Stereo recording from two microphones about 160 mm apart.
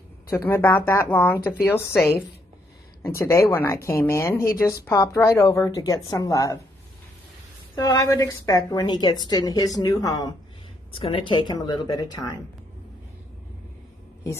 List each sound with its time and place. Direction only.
0.3 s speech: 15° left (ahead or behind)
3.2 s a woman's voice: 15° left (ahead or behind)
7.7 s a woman's voice: 20° left (ahead or behind)
10.9 s a woman's voice: 35° left (ahead or behind)